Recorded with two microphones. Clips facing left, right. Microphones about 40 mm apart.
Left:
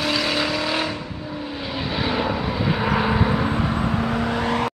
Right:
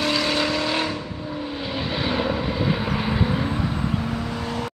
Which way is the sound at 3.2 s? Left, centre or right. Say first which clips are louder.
Left 3 dB; left.